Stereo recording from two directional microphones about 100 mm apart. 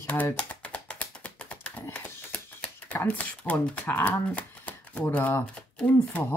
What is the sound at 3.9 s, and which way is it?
Speech, 20° left (ahead or behind).